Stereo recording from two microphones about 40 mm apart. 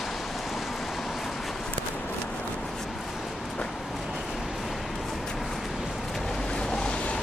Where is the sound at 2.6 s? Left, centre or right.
Centre.